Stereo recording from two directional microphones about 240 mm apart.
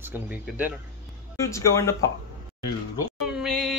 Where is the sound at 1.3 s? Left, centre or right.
Centre.